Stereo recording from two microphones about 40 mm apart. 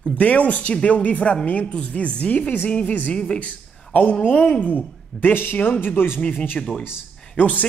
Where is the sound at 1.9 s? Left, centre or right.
Left.